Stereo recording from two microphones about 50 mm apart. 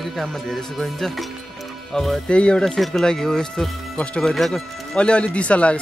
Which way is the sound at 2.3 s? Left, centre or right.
Left.